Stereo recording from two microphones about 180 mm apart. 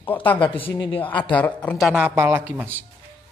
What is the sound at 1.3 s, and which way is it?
Speech, 10° left (ahead or behind).